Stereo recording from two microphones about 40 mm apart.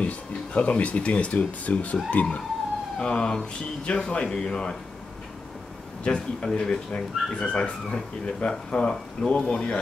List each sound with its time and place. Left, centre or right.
0.0 s speech: left
3.0 s speech: left
6.0 s speech: left